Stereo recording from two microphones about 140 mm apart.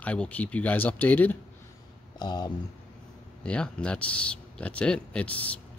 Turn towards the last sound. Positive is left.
turn(degrees=10)  # may be behind; listen again after turning